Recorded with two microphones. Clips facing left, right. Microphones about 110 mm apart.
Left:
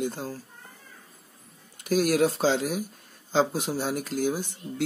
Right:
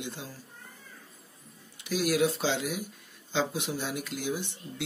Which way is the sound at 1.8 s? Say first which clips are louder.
Left 4 dB; 45° left (ahead or behind).